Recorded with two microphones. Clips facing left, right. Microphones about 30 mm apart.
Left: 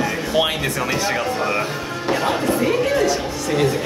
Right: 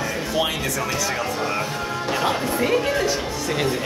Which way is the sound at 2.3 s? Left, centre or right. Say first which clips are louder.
Left 3 dB; centre.